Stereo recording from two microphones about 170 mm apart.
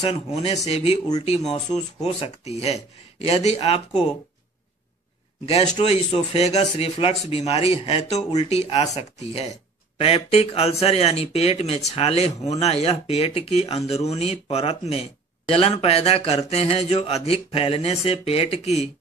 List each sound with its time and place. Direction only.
0.0 s speech: 35° left (ahead or behind)
5.4 s speech: 40° left (ahead or behind)